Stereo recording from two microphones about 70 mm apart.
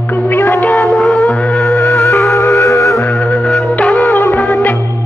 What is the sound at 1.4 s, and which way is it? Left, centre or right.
Music, centre.